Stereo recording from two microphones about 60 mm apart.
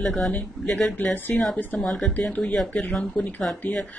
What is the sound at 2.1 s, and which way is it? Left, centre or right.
Speech, left.